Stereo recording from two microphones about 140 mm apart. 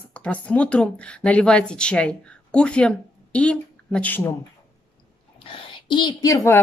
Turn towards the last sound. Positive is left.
turn(degrees=25)  # may be behind; listen again after turning